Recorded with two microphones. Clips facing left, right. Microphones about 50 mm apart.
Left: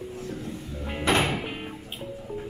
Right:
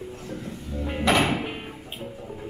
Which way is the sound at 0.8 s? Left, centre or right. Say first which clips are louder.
Right 2 dB; centre.